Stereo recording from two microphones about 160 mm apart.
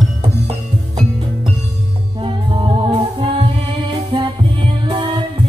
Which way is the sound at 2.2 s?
30° right (ahead or behind).